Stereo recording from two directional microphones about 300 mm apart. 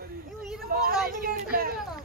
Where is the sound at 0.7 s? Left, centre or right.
Right.